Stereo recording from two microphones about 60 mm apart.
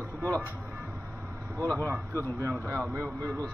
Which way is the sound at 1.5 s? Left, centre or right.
Right.